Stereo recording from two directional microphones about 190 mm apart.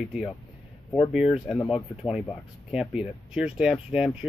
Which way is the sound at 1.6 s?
Centre (ahead or behind).